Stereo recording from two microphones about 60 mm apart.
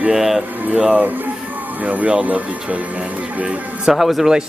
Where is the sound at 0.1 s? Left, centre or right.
Centre.